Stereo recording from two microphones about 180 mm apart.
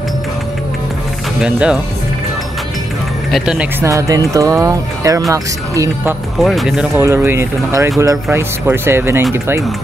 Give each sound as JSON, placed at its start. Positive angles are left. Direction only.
{"t": 1.4, "sound": "speech", "side_deg": -5}
{"t": 3.3, "sound": "speech", "side_deg": 0}
{"t": 3.8, "sound": "speech", "side_deg": -15}
{"t": 6.4, "sound": "speech", "side_deg": 0}
{"t": 7.0, "sound": "speech", "side_deg": -15}